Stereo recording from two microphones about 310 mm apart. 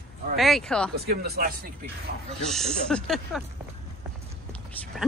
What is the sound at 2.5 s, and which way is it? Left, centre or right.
Speech, centre.